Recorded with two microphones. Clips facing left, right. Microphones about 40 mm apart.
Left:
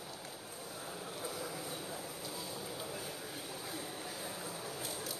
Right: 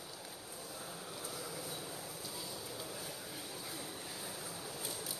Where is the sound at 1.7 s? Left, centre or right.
Centre.